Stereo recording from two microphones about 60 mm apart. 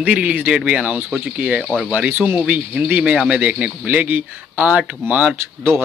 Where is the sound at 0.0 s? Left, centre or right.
Right.